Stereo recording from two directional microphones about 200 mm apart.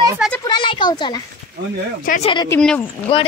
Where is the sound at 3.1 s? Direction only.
25° left (ahead or behind).